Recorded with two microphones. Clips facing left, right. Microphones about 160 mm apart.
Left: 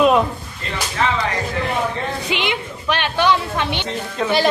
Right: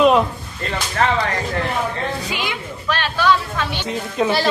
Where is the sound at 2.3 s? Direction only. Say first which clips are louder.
Left 3 dB; 20° left (ahead or behind).